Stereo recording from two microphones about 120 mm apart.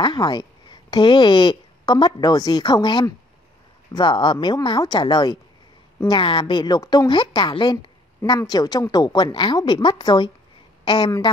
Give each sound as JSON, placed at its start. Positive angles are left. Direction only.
{"t": 0.0, "sound": "a woman's voice", "side_deg": 40}
{"t": 8.2, "sound": "a woman's voice", "side_deg": 30}